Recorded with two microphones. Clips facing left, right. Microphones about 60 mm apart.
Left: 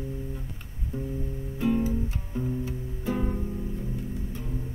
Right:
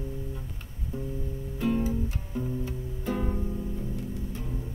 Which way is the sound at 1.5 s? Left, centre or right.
Centre.